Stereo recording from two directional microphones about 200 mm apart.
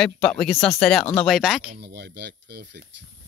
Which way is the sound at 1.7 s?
60° right (ahead or behind).